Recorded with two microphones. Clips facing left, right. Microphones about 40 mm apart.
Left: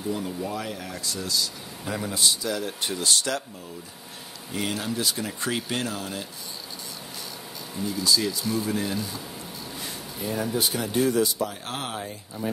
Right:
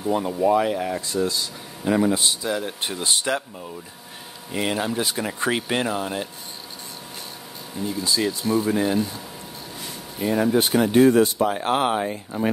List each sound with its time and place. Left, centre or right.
0.1 s speech: right
4.5 s speech: right
7.8 s speech: right
10.2 s speech: right